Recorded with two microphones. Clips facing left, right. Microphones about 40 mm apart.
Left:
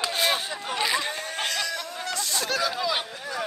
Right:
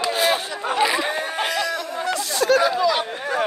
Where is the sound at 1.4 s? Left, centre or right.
Centre.